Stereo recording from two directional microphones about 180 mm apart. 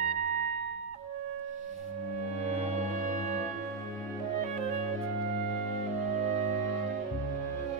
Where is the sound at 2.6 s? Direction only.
40° right (ahead or behind).